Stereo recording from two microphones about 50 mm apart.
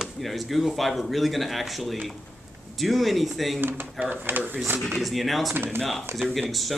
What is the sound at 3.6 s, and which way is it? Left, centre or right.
Speech, right.